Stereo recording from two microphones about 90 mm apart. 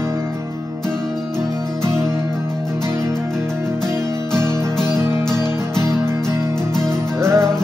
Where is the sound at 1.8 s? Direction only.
35° right (ahead or behind).